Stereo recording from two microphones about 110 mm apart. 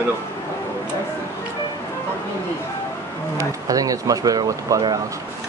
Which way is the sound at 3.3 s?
35° right (ahead or behind).